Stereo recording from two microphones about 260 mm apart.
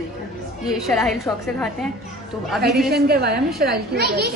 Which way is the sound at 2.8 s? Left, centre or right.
Right.